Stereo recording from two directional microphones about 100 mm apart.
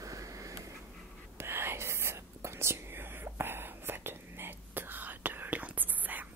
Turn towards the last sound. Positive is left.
turn(degrees=-15)  # may be behind; listen again after turning